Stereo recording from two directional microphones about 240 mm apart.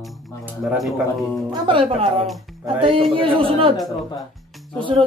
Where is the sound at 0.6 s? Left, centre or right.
Centre.